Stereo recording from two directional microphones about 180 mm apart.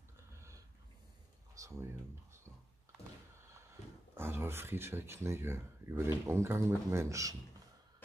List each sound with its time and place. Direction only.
1.5 s speech: 20° right (ahead or behind)
3.8 s a sound: 40° left (ahead or behind)
4.1 s speech: 15° right (ahead or behind)